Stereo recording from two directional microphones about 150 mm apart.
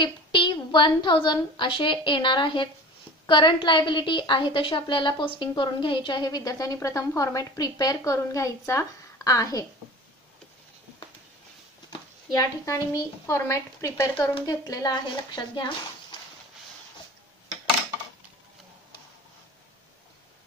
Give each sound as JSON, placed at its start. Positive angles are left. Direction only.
{"t": 0.0, "sound": "a woman's voice", "side_deg": 35}
{"t": 12.4, "sound": "a woman's voice", "side_deg": 25}